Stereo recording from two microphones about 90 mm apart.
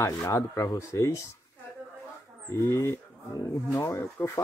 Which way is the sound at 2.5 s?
30° left (ahead or behind).